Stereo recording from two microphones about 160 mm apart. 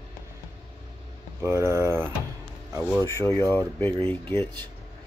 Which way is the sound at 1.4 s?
15° right (ahead or behind).